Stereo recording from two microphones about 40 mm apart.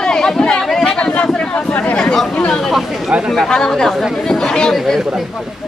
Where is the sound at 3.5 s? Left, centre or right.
Centre.